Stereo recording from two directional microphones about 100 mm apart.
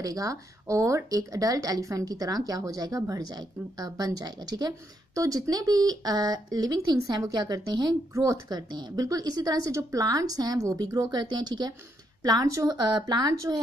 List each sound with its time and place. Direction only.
0.0 s speech: 35° right (ahead or behind)
8.1 s speech: 30° right (ahead or behind)
8.5 s speech: 45° right (ahead or behind)